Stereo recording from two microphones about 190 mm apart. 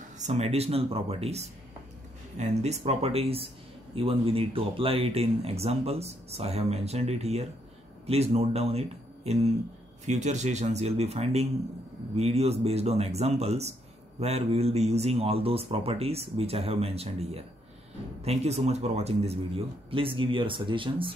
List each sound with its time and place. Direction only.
0.2 s speech: 35° right (ahead or behind)